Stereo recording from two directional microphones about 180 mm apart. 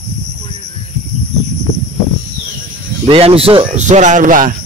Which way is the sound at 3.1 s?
30° right (ahead or behind).